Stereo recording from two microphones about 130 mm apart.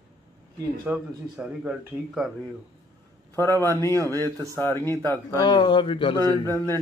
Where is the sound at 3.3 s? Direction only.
20° left (ahead or behind).